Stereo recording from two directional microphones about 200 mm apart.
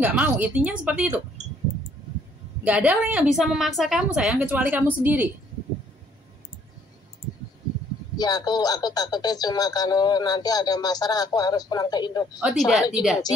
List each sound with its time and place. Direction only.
0.0 s a woman's voice: 5° right (ahead or behind)
2.6 s a woman's voice: 5° right (ahead or behind)
8.2 s speech: 20° left (ahead or behind)
12.4 s speech: centre (ahead or behind)